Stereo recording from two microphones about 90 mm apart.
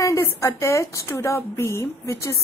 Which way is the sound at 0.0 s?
35° left (ahead or behind).